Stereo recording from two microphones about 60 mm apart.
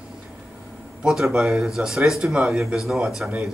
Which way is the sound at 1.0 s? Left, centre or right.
Centre.